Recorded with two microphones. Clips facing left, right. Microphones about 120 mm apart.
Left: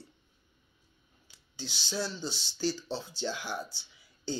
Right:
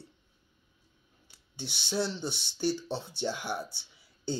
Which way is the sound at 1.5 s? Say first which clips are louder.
Right 4 dB; 60° right (ahead or behind).